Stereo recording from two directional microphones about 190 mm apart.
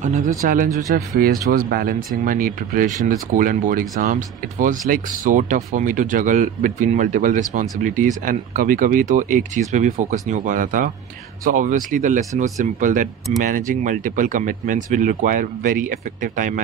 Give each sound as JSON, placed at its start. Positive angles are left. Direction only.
{"t": 0.0, "sound": "speech", "side_deg": -40}